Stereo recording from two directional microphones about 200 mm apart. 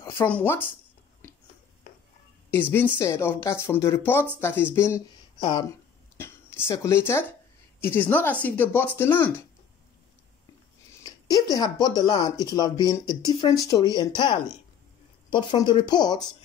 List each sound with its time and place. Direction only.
0.0 s speech: 15° left (ahead or behind)
3.0 s speech: 10° left (ahead or behind)
11.1 s a sound: 20° left (ahead or behind)
11.5 s speech: 20° left (ahead or behind)
15.3 s speech: 25° left (ahead or behind)